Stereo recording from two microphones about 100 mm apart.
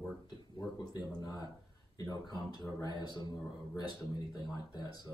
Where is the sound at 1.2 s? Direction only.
40° left (ahead or behind).